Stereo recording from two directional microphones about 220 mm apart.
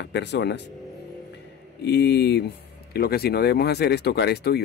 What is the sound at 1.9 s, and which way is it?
Speech, 50° left (ahead or behind).